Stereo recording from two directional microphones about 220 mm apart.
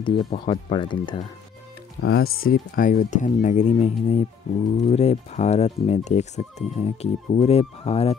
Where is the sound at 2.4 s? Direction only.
40° left (ahead or behind).